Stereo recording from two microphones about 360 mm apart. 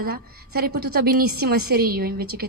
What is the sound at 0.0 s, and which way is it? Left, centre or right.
A woman's voice, right.